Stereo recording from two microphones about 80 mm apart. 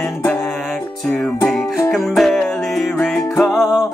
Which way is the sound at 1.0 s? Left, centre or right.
Centre.